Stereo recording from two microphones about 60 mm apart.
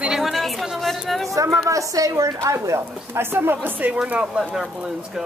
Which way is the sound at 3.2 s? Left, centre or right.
Right.